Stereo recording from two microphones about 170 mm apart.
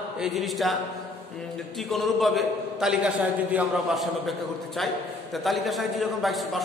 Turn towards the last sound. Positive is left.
turn(degrees=0)  # may be behind; listen again after turning